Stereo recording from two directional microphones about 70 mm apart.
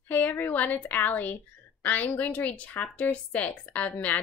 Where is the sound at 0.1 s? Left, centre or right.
Left.